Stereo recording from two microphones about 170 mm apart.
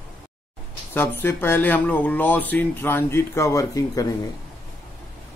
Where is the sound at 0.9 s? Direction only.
10° left (ahead or behind).